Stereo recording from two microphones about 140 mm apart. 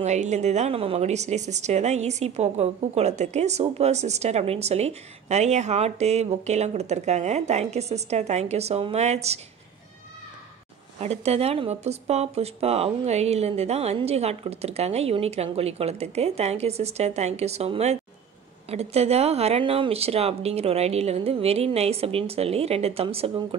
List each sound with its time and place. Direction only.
0.0 s a woman's voice: 55° right (ahead or behind)
11.0 s a woman's voice: 50° right (ahead or behind)